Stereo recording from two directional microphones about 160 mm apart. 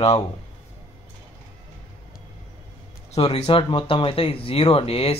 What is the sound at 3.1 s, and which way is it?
Speech, 40° left (ahead or behind).